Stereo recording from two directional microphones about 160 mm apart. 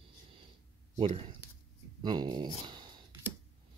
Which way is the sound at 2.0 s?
30° right (ahead or behind).